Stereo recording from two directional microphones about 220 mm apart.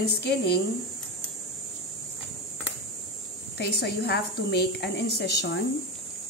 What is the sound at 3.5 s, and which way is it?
A woman's voice, 50° left (ahead or behind).